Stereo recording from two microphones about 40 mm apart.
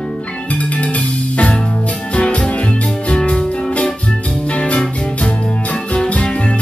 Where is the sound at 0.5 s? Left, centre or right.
Left.